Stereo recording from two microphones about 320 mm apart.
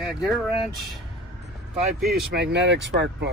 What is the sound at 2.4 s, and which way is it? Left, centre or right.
Speech, right.